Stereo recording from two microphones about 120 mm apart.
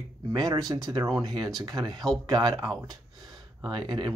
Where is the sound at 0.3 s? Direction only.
30° right (ahead or behind).